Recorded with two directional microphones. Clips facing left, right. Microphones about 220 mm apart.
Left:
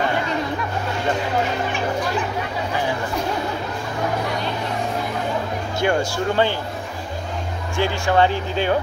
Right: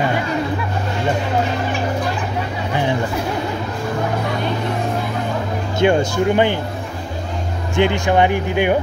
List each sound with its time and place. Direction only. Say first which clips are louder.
5.8 s speech: right 6 dB; 20° right (ahead or behind)
7.7 s speech: right 4 dB; 20° right (ahead or behind)